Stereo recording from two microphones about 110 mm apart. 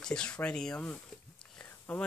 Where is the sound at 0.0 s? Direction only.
5° left (ahead or behind).